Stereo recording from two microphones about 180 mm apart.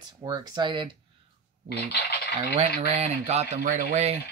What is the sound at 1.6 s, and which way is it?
Fowl, 65° left (ahead or behind).